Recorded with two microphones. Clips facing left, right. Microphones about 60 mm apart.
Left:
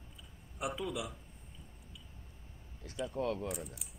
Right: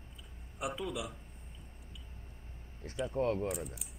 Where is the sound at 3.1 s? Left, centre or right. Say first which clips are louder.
Right 4 dB; right.